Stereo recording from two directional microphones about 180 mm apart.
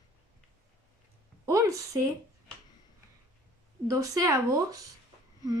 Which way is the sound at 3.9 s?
20° right (ahead or behind).